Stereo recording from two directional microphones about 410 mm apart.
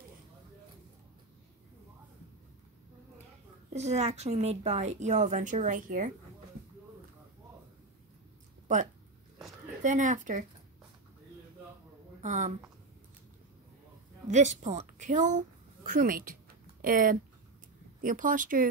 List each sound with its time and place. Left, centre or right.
3.7 s a woman's voice: centre
9.8 s a woman's voice: centre
12.2 s a woman's voice: centre
14.2 s a woman's voice: centre